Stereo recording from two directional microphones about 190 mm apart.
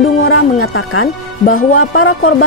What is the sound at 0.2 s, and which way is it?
Music, 90° left.